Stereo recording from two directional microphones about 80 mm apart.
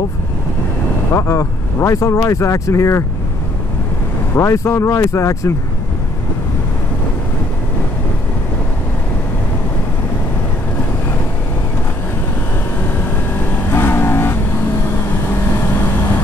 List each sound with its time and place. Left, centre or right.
1.1 s speech: left
4.4 s speech: left
13.7 s vehicle: left